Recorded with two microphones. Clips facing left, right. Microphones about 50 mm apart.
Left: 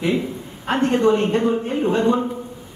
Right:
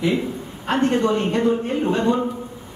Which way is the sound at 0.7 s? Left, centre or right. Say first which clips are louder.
Left 2 dB; centre.